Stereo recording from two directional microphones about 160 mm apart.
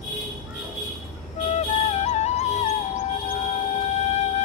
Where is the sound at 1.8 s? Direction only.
45° left (ahead or behind).